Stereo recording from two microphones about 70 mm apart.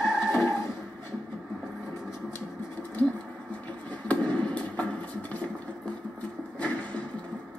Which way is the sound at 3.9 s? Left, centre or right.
Centre.